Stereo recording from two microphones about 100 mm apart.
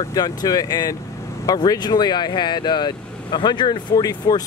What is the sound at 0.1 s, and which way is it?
Speech, 40° left (ahead or behind).